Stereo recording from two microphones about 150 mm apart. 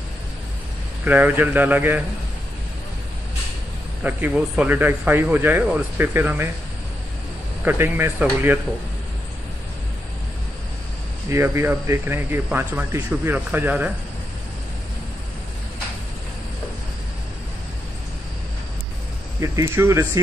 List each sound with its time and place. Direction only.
1.0 s speech: 10° right (ahead or behind)
4.0 s speech: 10° right (ahead or behind)
7.6 s speech: 15° right (ahead or behind)
11.2 s speech: 15° right (ahead or behind)
19.4 s speech: 20° right (ahead or behind)